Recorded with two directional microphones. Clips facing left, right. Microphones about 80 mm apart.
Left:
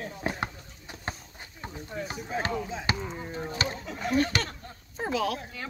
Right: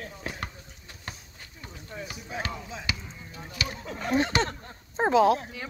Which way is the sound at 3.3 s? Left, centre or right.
Left.